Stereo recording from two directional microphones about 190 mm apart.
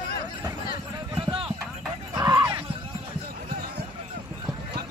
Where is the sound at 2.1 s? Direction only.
15° right (ahead or behind).